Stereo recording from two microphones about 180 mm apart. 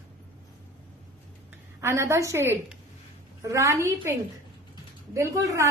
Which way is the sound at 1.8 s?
15° right (ahead or behind).